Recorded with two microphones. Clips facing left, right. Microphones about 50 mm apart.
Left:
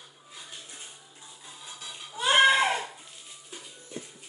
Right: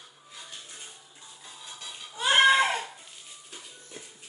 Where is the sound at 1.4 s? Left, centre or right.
Centre.